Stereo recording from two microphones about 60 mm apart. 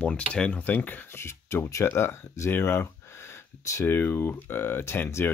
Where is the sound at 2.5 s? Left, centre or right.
Left.